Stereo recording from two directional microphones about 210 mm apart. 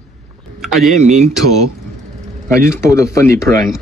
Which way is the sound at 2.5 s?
15° left (ahead or behind).